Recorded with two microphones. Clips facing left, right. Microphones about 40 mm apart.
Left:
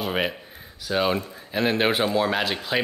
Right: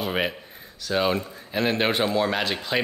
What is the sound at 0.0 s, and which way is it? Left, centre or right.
A man's voice, centre.